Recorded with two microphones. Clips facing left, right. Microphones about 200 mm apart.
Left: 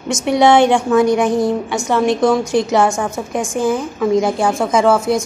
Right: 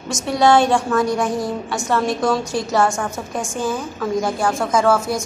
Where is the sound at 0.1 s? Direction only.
20° left (ahead or behind).